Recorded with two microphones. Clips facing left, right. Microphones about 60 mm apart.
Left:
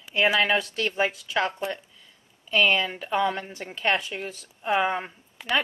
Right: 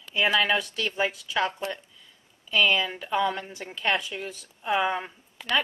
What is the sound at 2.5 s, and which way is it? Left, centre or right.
Speech, centre.